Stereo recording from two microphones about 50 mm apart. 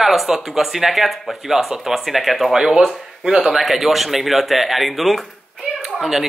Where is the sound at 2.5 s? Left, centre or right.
Centre.